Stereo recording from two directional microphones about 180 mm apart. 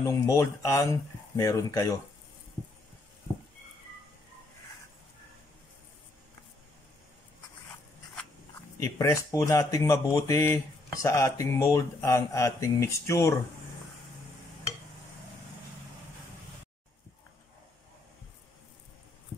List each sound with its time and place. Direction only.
0.0 s speech: 15° left (ahead or behind)
8.7 s speech: 15° left (ahead or behind)